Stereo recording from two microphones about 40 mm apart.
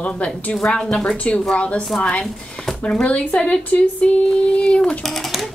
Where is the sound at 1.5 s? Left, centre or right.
Left.